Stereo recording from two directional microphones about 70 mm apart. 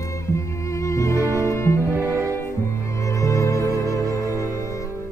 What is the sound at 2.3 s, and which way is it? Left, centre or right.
Music, left.